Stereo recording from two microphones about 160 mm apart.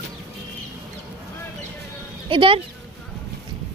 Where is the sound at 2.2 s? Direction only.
35° right (ahead or behind).